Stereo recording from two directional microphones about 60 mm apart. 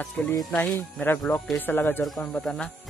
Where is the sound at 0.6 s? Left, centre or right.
Left.